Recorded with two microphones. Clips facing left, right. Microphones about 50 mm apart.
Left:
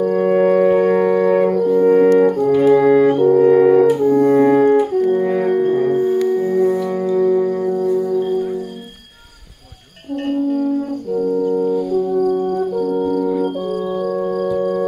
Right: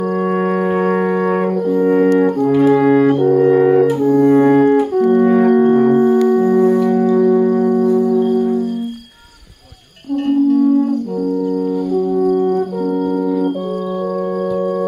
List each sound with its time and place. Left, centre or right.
0.1 s music: right
1.5 s french horn: centre
2.7 s music: centre
3.3 s brass instrument: centre
4.0 s music: centre
4.5 s music: right
5.2 s music: right
7.0 s music: centre
10.3 s humming: centre